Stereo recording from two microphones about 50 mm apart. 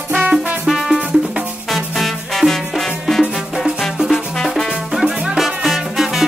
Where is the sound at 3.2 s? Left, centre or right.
Centre.